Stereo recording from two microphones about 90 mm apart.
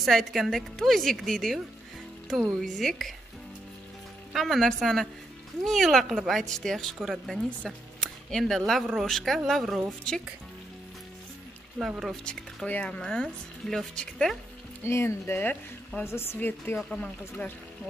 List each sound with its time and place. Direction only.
0.0 s a woman's voice: centre (ahead or behind)
2.6 s a woman's voice: 5° left (ahead or behind)
4.3 s a woman's voice: centre (ahead or behind)
12.0 s a woman's voice: centre (ahead or behind)
12.6 s a woman's voice: 15° left (ahead or behind)
14.8 s speech: 30° left (ahead or behind)
16.7 s speech: 5° left (ahead or behind)